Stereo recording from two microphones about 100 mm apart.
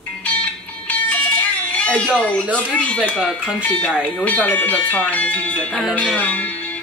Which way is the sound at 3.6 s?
15° left (ahead or behind).